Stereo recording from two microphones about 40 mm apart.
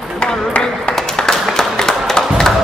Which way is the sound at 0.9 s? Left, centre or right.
Centre.